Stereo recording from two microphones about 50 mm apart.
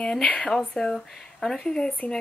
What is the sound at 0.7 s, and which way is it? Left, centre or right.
Speech, centre.